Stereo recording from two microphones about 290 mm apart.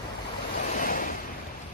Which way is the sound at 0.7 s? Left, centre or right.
Left.